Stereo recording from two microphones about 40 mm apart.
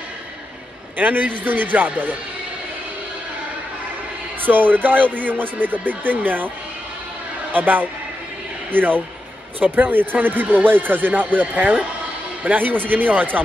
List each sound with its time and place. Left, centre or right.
0.9 s speech: right
4.4 s speech: right
7.5 s speech: right